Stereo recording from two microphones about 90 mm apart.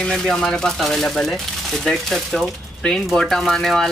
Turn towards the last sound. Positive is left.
turn(degrees=5)  # may be behind; listen again after turning